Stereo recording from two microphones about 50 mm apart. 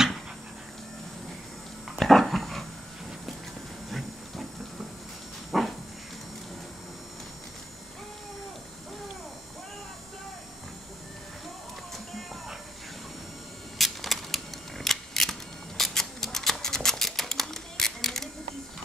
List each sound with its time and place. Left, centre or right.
2.0 s dog: centre
3.9 s a sound: centre
5.5 s dog: centre
13.7 s camera: centre
15.8 s scissors: centre